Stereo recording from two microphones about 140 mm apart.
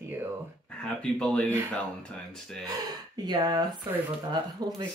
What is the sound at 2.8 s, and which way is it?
Speech, 30° right (ahead or behind).